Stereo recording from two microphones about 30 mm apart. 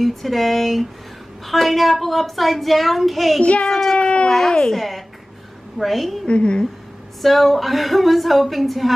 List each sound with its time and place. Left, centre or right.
0.0 s speech: centre
3.6 s a child's voice: centre
4.7 s speech: centre
6.2 s a woman's voice: left
7.2 s speech: centre